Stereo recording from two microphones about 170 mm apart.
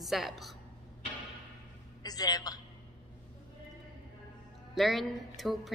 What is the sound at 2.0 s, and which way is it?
Speech, 20° left (ahead or behind).